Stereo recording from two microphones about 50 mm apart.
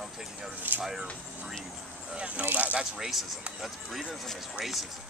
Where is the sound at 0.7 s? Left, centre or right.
Right.